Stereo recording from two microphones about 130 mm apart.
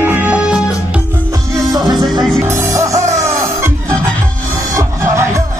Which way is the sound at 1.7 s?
35° right (ahead or behind).